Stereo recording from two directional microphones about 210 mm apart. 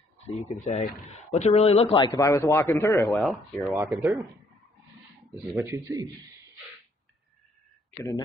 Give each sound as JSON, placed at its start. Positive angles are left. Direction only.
{"t": 0.4, "sound": "speech", "side_deg": 35}
{"t": 2.1, "sound": "speech", "side_deg": 10}
{"t": 3.6, "sound": "speech", "side_deg": -10}
{"t": 5.5, "sound": "speech", "side_deg": -15}